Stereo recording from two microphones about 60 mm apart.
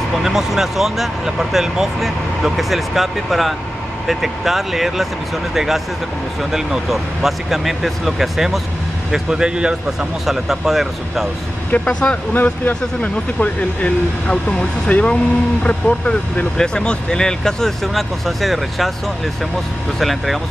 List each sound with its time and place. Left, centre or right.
0.2 s speech: centre
10.2 s speech: centre
11.7 s speech: centre
12.4 s speech: left; by 18.9 s centre
20.0 s speech: centre